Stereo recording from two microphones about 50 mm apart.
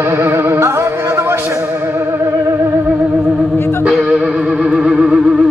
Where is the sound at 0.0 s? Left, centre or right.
Right.